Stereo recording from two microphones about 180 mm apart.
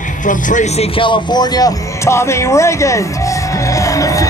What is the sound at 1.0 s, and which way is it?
A man's voice, 25° left (ahead or behind).